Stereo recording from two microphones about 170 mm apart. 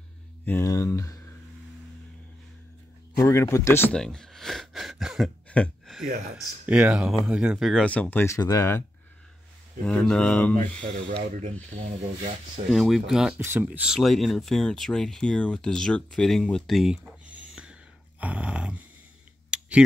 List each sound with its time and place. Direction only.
0.5 s speech: 15° left (ahead or behind)
3.2 s speech: 15° left (ahead or behind)
9.8 s speech: 5° left (ahead or behind)
10.5 s speech: 50° right (ahead or behind)
12.7 s speech: centre (ahead or behind)
18.2 s dog: 10° right (ahead or behind)
19.5 s typing: 5° right (ahead or behind)